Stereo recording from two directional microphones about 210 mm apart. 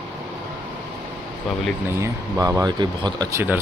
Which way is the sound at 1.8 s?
15° right (ahead or behind).